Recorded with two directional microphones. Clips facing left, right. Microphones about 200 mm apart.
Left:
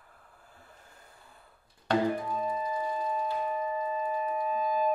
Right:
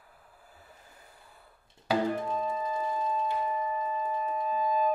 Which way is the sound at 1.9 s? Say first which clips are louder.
Left 1 dB; 5° right (ahead or behind).